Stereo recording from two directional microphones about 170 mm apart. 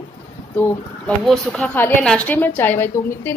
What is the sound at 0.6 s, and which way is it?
A woman's voice, 5° left (ahead or behind).